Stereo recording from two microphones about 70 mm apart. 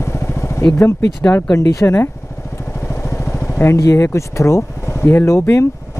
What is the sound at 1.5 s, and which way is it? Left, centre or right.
Speech, left.